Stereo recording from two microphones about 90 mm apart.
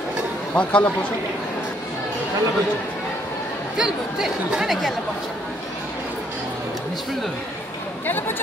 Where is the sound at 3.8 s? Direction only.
5° right (ahead or behind).